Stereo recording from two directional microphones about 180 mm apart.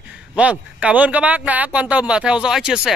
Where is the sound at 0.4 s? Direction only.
5° right (ahead or behind).